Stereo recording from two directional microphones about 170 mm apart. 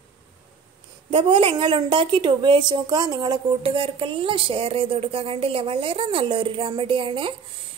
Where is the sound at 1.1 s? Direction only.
30° right (ahead or behind).